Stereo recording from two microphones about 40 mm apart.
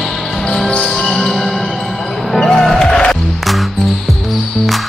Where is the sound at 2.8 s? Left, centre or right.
Left.